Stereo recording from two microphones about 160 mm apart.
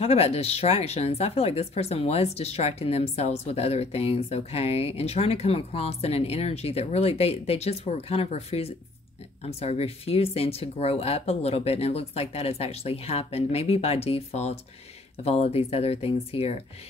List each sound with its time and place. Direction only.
0.0 s speech: 40° left (ahead or behind)